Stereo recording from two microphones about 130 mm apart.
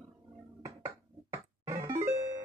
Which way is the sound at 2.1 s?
60° right (ahead or behind).